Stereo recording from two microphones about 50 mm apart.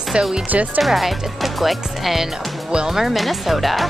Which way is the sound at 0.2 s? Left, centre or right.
Centre.